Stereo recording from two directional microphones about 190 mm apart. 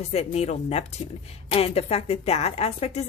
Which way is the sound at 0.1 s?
35° left (ahead or behind).